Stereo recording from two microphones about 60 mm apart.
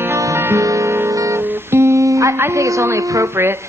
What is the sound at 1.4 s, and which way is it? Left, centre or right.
Guitar, right.